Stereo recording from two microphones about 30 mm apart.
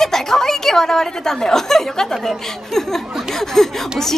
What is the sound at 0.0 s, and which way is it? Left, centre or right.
Speech, centre.